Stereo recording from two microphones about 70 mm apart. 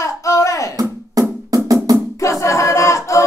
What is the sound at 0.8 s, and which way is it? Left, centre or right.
Drum, right.